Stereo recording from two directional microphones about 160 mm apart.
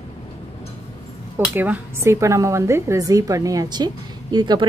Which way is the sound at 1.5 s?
10° right (ahead or behind).